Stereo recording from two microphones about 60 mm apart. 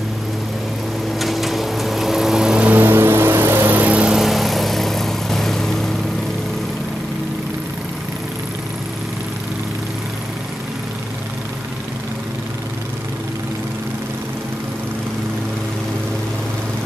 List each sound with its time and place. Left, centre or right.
1.2 s vehicle: centre
2.6 s vehicle: right
2.9 s music: right
4.1 s vehicle: centre